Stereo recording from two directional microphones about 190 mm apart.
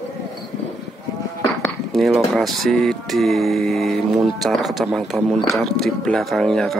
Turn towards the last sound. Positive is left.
turn(degrees=0)  # may be behind; listen again after turning